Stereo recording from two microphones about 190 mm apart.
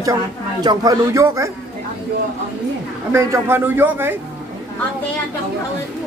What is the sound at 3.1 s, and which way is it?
Speech, 15° right (ahead or behind).